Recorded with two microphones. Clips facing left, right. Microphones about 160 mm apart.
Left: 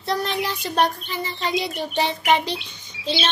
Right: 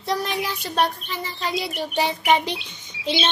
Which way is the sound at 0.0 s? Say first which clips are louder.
Left 1 dB; 10° right (ahead or behind).